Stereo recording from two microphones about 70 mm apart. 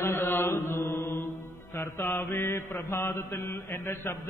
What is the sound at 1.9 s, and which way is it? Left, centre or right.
Mantra, left.